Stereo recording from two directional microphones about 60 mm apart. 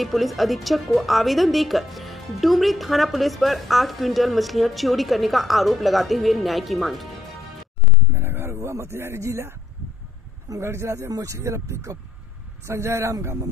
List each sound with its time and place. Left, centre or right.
0.0 s a woman's voice: centre
8.1 s a sound: right
10.6 s speech: right
11.1 s speech: right
11.3 s speech: right